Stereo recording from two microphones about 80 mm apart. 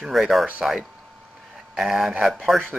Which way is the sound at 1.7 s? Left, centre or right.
Centre.